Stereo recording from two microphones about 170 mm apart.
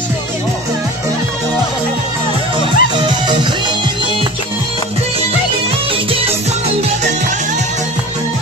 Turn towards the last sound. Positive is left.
turn(degrees=-45)  # may be behind; listen again after turning